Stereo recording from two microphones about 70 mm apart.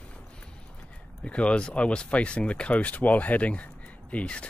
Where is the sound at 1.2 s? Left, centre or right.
Centre.